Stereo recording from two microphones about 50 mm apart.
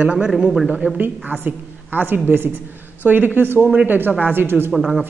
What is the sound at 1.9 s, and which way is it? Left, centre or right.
Speech, right.